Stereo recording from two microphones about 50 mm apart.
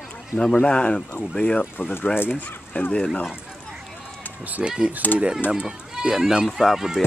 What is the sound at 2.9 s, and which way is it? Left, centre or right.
Speech, centre.